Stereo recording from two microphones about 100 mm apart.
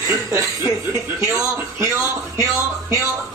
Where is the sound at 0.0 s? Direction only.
30° right (ahead or behind).